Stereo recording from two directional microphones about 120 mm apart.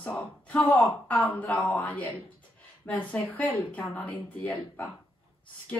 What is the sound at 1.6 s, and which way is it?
Speech, 10° left (ahead or behind).